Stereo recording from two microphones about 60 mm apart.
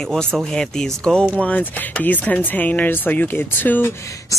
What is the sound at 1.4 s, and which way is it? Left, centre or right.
Speech, left.